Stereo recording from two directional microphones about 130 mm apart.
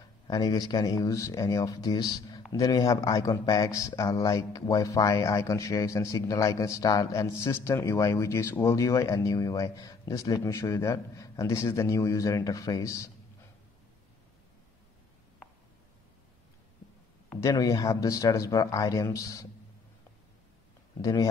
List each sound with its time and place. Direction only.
0.3 s speech: 30° left (ahead or behind)
17.4 s speech: 25° left (ahead or behind)
21.0 s speech: 25° left (ahead or behind)